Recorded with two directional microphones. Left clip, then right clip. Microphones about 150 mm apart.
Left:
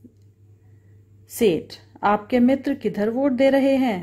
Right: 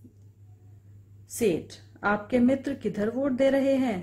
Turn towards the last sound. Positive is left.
turn(degrees=15)  # may be behind; listen again after turning